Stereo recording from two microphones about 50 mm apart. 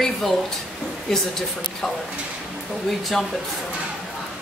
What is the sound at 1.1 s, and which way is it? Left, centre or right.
Speech, centre.